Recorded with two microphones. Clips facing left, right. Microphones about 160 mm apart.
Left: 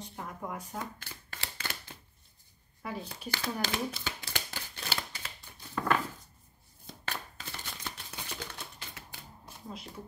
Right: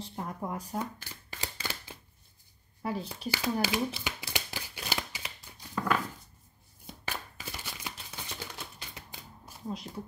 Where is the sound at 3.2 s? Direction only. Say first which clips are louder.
Right 5 dB; 10° right (ahead or behind).